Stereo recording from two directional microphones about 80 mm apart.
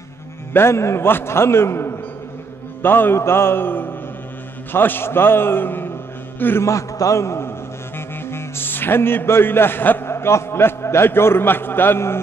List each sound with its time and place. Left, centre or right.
0.5 s a man's voice: left
6.7 s a man's voice: left